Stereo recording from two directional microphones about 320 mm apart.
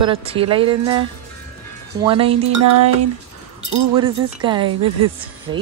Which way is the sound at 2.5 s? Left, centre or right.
Right.